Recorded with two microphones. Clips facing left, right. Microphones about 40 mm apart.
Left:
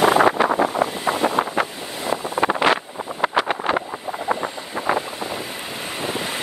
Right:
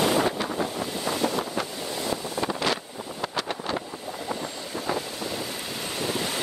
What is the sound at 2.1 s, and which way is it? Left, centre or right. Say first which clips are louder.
Wind noise: left 10 dB; left.